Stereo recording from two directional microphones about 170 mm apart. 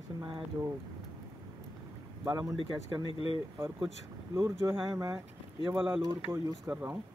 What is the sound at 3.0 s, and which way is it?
Speech, 35° left (ahead or behind).